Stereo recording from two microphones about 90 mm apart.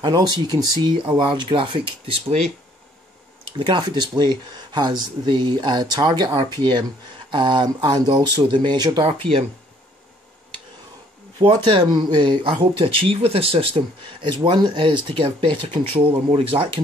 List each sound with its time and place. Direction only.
0.0 s speech: 50° right (ahead or behind); by 2.1 s 65° right (ahead or behind)
3.5 s speech: 60° right (ahead or behind)
8.1 s speech: 65° right (ahead or behind)
8.7 s speech: 45° right (ahead or behind)
11.3 s speech: 80° right
11.9 s speech: 55° right (ahead or behind); by 14.5 s 75° right (ahead or behind)
14.5 s speech: 50° right (ahead or behind); by 16.8 s 90° right